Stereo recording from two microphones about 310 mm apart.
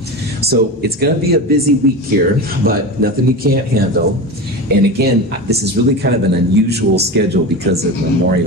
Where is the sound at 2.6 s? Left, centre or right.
Right.